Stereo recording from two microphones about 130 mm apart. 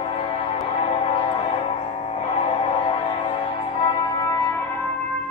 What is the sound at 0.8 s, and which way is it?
Music, 45° left (ahead or behind).